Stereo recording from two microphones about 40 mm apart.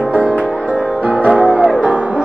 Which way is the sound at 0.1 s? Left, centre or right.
Right.